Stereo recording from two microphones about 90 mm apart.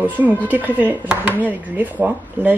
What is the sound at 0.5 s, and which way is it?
Speech, 20° right (ahead or behind).